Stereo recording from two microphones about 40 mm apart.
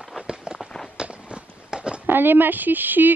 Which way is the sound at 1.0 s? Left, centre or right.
Right.